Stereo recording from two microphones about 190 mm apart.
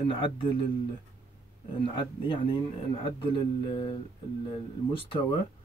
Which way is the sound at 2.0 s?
25° left (ahead or behind).